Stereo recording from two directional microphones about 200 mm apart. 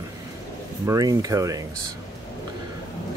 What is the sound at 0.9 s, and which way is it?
Speech, 20° right (ahead or behind).